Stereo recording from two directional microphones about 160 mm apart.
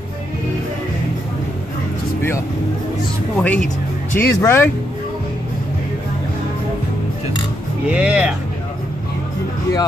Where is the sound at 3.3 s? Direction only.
10° left (ahead or behind).